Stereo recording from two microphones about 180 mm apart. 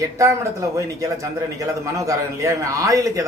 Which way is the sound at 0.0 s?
15° right (ahead or behind).